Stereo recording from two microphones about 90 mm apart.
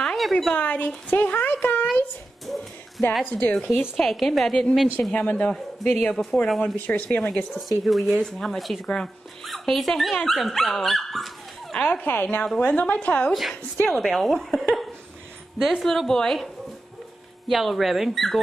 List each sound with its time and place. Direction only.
0.0 s a sound: 5° left (ahead or behind)
0.6 s speech: 15° left (ahead or behind)
3.3 s a man's voice: 15° left (ahead or behind)
5.1 s a man's voice: 15° left (ahead or behind)
6.6 s a man's voice: 20° left (ahead or behind)
7.5 s speech: centre (ahead or behind)
11.7 s a man's voice: 15° left (ahead or behind)
13.3 s speech: centre (ahead or behind)
17.5 s speech: centre (ahead or behind)